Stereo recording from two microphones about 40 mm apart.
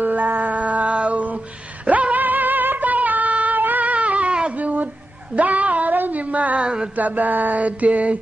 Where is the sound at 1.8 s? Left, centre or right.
Right.